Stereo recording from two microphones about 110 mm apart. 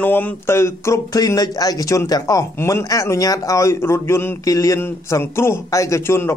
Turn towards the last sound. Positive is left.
turn(degrees=25)  # may be behind; listen again after turning